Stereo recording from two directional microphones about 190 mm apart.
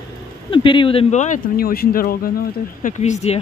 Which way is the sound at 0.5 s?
25° left (ahead or behind).